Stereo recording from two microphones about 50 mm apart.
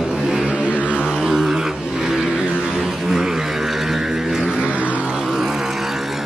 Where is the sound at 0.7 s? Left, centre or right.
Left.